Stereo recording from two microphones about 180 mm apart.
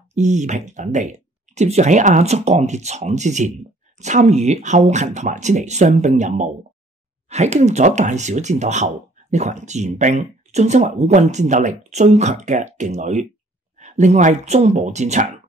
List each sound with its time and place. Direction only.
0.1 s speech: 40° right (ahead or behind)